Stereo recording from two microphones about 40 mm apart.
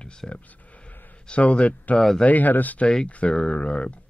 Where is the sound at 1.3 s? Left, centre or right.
Left.